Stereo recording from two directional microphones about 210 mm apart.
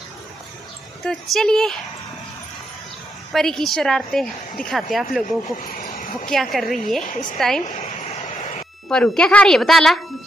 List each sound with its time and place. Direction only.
1.0 s a woman's voice: centre (ahead or behind)
3.3 s a woman's voice: centre (ahead or behind)
5.7 s a sound: 35° left (ahead or behind)
6.3 s a woman's voice: centre (ahead or behind)
7.1 s a woman's voice: 35° left (ahead or behind)
7.3 s a woman's voice: centre (ahead or behind)
7.6 s a sound: 35° left (ahead or behind)
8.8 s a woman's voice: 5° left (ahead or behind)